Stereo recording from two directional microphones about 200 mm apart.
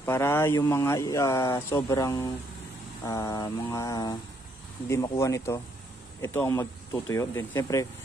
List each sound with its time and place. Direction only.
0.0 s speech: 10° left (ahead or behind)
3.1 s a sound: 15° left (ahead or behind)
4.8 s speech: 15° left (ahead or behind)